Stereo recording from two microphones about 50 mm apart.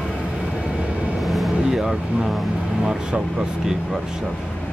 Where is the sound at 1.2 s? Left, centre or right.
Centre.